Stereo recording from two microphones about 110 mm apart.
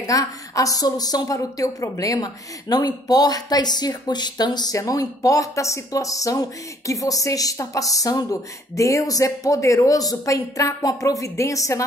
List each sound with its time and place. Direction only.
0.0 s a woman's voice: 30° left (ahead or behind)